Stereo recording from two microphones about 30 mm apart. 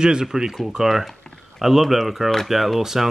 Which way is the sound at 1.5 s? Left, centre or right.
Centre.